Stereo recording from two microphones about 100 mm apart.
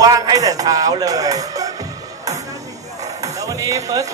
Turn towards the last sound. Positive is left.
turn(degrees=-35)  # may be behind; listen again after turning